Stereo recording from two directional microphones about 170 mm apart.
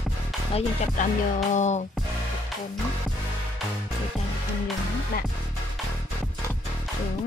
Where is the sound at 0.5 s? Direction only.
45° left (ahead or behind).